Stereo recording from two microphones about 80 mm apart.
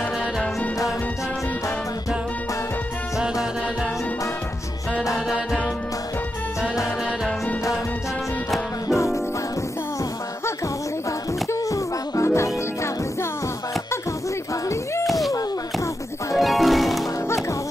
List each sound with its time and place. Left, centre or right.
5.1 s music: centre
8.8 s music: left
11.1 s music: left
15.0 s a sound: centre
15.3 s a sound: left
16.3 s music: centre